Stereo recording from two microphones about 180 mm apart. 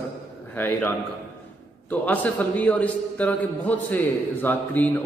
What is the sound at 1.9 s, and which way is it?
A man's voice, 10° left (ahead or behind).